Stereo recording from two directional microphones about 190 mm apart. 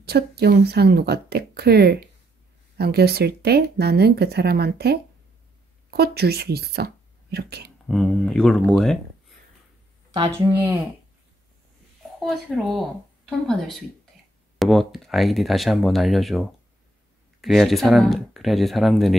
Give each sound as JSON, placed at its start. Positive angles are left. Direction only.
{"t": 0.0, "sound": "speech", "side_deg": -55}
{"t": 7.9, "sound": "speech", "side_deg": 0}
{"t": 10.5, "sound": "speech", "side_deg": -10}
{"t": 12.2, "sound": "speech", "side_deg": 0}